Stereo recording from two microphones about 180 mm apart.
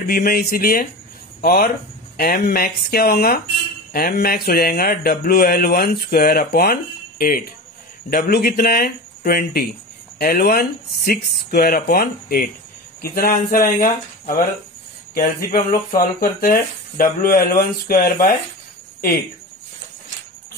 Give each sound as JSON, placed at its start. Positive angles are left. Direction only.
{"t": 0.0, "sound": "mantra", "side_deg": 55}
{"t": 1.4, "sound": "speech", "side_deg": 55}
{"t": 2.1, "sound": "mantra", "side_deg": 55}
{"t": 15.1, "sound": "speech", "side_deg": 55}